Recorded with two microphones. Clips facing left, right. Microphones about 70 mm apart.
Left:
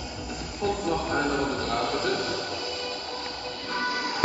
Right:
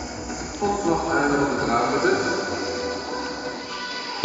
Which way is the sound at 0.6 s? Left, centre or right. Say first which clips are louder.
Right 5 dB; centre.